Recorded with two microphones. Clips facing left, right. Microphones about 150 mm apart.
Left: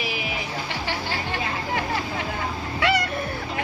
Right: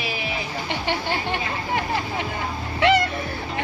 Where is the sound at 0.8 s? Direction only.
20° right (ahead or behind).